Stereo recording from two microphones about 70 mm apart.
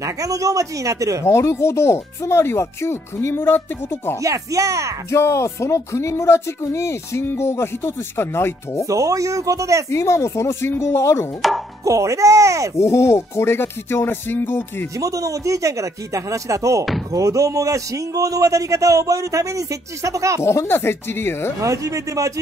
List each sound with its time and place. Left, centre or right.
0.0 s a man's voice: right
1.2 s speech: left
4.2 s a man's voice: right
5.1 s speech: left
8.8 s a man's voice: right
9.8 s speech: left
11.8 s a man's voice: right
12.7 s speech: left
15.0 s a man's voice: right
20.4 s speech: left
21.5 s a man's voice: right